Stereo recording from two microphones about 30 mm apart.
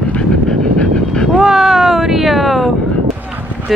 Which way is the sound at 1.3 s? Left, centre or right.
Centre.